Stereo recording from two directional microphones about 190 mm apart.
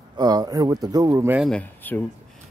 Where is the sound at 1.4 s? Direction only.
5° left (ahead or behind).